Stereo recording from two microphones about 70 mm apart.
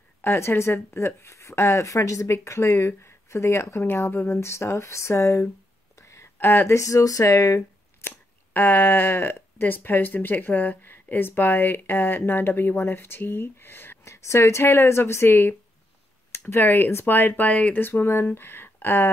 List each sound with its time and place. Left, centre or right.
0.2 s speech: left
5.9 s a sound: left
6.3 s speech: left
6.8 s speech: left
8.0 s a sound: left
8.5 s speech: left
14.0 s speech: left